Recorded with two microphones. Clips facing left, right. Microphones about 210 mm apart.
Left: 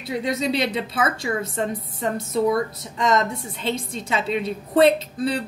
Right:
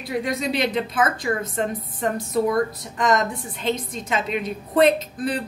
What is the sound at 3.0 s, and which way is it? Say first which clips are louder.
A woman's voice: even; 25° left (ahead or behind).